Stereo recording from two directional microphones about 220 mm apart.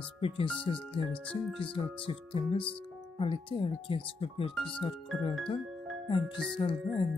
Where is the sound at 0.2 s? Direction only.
25° left (ahead or behind).